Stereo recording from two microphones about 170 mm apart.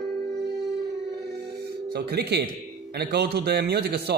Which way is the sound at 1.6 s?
75° right (ahead or behind).